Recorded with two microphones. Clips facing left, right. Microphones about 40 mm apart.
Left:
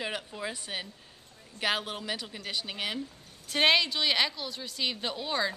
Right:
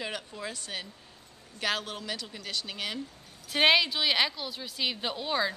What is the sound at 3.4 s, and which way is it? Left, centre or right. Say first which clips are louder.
A woman's voice: right 1 dB; centre.